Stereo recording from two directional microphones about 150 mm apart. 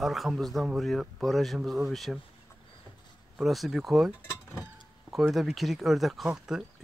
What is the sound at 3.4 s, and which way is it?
Speech, centre (ahead or behind).